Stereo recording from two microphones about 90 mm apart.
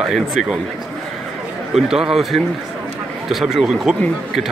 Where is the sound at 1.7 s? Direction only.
5° right (ahead or behind).